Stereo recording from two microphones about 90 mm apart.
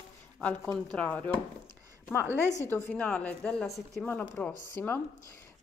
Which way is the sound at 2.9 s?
15° left (ahead or behind).